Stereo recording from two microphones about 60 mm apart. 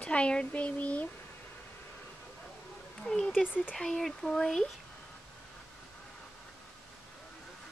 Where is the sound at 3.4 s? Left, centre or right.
Left.